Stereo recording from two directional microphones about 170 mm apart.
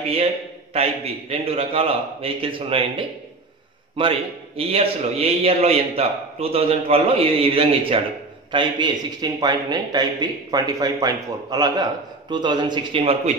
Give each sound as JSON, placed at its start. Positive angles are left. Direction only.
{"t": 0.7, "sound": "a man's voice", "side_deg": -35}
{"t": 4.6, "sound": "a man's voice", "side_deg": -35}